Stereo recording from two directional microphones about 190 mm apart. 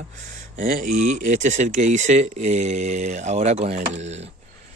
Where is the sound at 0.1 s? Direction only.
40° right (ahead or behind).